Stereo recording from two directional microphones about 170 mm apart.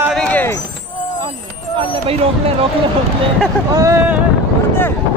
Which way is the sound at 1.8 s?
35° right (ahead or behind).